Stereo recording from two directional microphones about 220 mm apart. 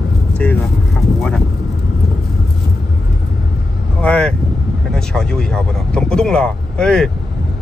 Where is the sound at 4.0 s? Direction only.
5° left (ahead or behind).